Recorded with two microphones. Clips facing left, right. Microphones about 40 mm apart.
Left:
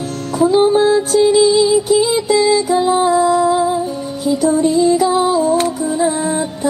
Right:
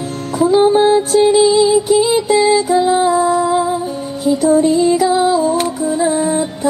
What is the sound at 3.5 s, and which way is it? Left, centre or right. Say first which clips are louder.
Music: even; right.